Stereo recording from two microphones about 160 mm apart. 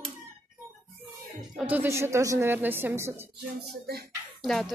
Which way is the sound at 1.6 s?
10° right (ahead or behind).